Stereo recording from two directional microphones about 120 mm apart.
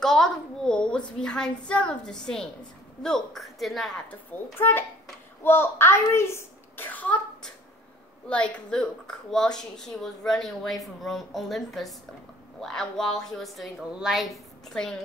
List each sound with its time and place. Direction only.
0.0 s a woman's voice: 5° left (ahead or behind)
4.6 s a child's voice: 20° left (ahead or behind)